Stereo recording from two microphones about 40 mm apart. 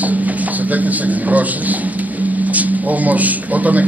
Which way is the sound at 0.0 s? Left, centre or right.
Right.